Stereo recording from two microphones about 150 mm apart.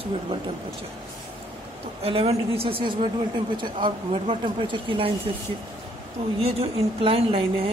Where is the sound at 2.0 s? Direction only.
40° right (ahead or behind).